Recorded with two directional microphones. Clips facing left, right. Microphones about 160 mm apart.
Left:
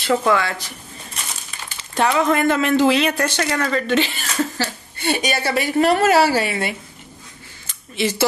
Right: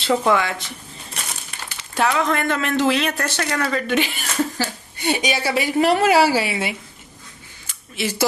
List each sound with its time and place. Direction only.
0.1 s speech: 15° right (ahead or behind)
2.0 s speech: 5° left (ahead or behind)
7.6 s a sound: 5° right (ahead or behind)